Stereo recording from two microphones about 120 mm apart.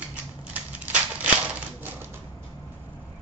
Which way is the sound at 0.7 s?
10° right (ahead or behind).